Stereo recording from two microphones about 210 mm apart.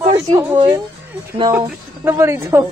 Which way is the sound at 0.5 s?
25° right (ahead or behind).